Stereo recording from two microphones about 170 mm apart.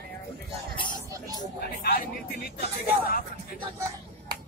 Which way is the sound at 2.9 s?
60° left (ahead or behind).